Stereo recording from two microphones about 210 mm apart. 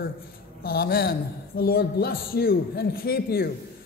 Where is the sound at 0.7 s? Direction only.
45° left (ahead or behind).